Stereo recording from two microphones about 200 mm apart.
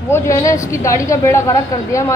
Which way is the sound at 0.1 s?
15° left (ahead or behind).